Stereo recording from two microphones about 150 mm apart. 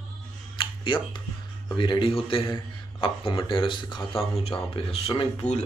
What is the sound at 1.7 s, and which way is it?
Mantra, 35° left (ahead or behind).